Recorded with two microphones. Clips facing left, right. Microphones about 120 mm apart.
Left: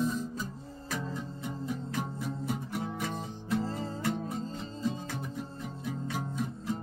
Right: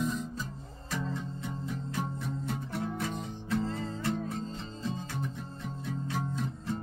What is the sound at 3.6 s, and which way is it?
Music, 35° left (ahead or behind).